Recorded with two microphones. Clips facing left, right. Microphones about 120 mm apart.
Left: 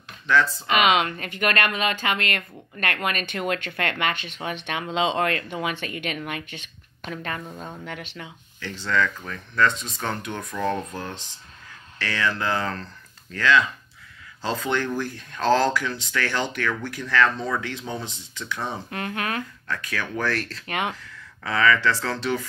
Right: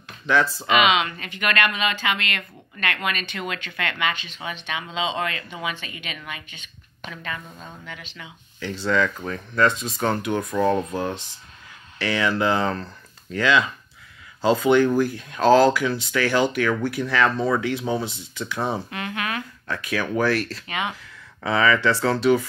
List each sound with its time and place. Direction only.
0.3 s speech: 15° right (ahead or behind)
0.7 s speech: 50° left (ahead or behind)
7.4 s speech: 15° left (ahead or behind)
7.8 s speech: 60° left (ahead or behind)
8.5 s speech: 15° right (ahead or behind)
18.9 s speech: 40° left (ahead or behind)
19.7 s speech: 15° right (ahead or behind)
20.6 s speech: 55° left (ahead or behind)
20.9 s speech: 15° right (ahead or behind)